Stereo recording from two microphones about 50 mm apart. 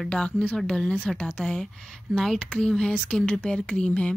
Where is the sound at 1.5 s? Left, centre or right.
Centre.